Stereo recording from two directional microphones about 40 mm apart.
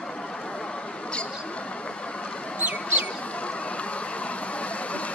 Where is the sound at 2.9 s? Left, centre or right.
Left.